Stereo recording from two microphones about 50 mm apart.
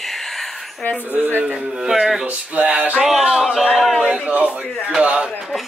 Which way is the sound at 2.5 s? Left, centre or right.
Right.